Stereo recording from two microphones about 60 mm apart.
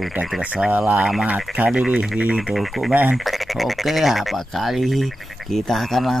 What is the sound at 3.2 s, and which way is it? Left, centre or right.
Speech, centre.